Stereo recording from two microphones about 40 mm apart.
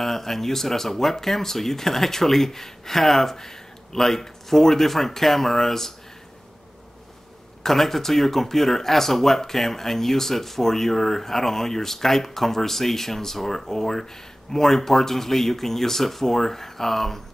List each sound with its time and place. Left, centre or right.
0.0 s speech: centre
7.6 s speech: centre